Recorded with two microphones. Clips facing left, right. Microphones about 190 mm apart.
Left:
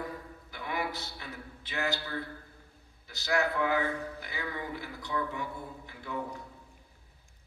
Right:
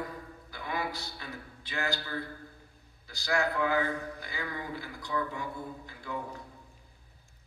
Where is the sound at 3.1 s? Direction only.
20° left (ahead or behind).